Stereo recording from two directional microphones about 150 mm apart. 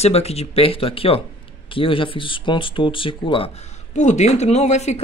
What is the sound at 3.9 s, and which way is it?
Speech, 50° left (ahead or behind).